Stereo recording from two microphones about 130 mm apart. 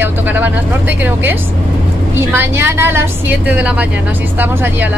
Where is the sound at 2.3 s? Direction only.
15° right (ahead or behind).